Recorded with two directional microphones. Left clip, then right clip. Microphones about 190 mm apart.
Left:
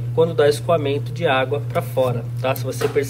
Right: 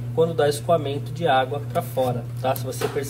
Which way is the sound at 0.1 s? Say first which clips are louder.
Left 4 dB; 20° right (ahead or behind).